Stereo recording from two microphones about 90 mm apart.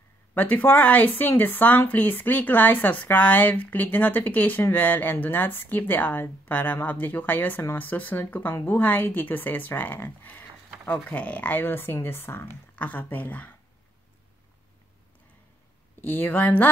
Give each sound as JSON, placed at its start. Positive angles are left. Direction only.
{"t": 0.3, "sound": "speech", "side_deg": 20}
{"t": 16.0, "sound": "speech", "side_deg": 20}